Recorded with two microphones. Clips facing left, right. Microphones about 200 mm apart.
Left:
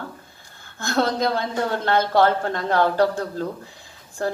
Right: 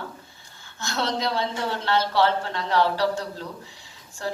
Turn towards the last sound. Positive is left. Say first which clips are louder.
# left 5 dB
turn(degrees=50)  # may be behind; listen again after turning